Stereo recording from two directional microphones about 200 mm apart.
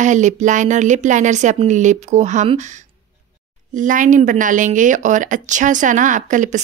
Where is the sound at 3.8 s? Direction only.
40° right (ahead or behind).